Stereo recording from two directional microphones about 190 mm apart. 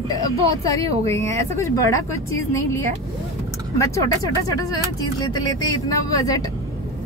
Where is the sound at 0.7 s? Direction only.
15° left (ahead or behind).